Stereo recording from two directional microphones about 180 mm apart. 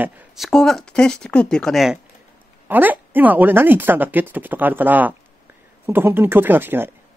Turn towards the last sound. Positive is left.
turn(degrees=-10)  # may be behind; listen again after turning